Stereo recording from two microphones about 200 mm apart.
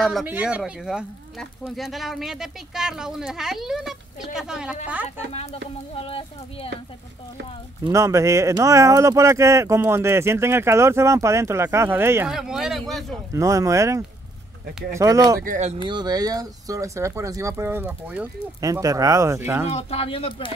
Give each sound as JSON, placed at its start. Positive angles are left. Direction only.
{"t": 0.0, "sound": "speech", "side_deg": 0}
{"t": 5.3, "sound": "speech", "side_deg": 30}
{"t": 7.8, "sound": "speech", "side_deg": -15}
{"t": 13.3, "sound": "speech", "side_deg": -15}
{"t": 15.4, "sound": "speech", "side_deg": -40}
{"t": 15.9, "sound": "speech", "side_deg": -20}
{"t": 19.7, "sound": "speech", "side_deg": 30}